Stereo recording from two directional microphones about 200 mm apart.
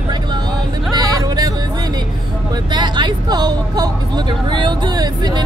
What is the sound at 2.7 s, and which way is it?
Speech, 20° right (ahead or behind).